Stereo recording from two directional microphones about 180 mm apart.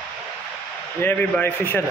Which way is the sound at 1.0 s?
10° left (ahead or behind).